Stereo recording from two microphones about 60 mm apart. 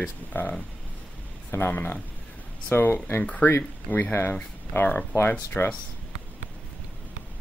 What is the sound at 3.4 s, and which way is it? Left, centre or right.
Speech, left.